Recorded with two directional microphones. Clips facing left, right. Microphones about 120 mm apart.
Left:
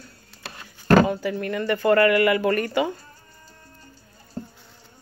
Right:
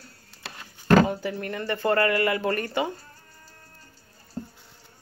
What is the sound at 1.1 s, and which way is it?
Speech, 25° right (ahead or behind).